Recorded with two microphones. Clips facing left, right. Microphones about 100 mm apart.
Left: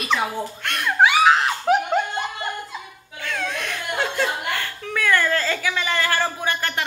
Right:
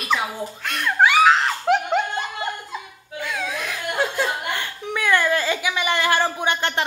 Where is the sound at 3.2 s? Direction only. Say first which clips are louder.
Even; 5° right (ahead or behind).